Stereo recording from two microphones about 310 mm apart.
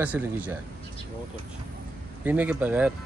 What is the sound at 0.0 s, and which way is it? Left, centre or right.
Speech, centre.